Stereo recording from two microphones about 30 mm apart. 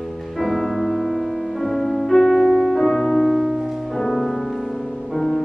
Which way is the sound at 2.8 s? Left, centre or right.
Centre.